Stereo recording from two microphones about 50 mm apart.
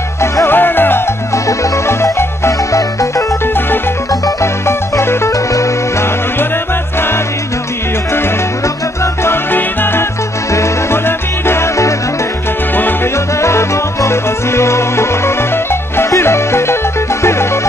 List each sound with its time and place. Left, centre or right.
0.5 s music: left
1.3 s music: left
3.4 s music: left
4.4 s music: left
6.3 s music: left
8.6 s salsa music: left
9.3 s music: left
10.5 s music: left
11.1 s music: left
12.7 s music: left
13.1 s music: left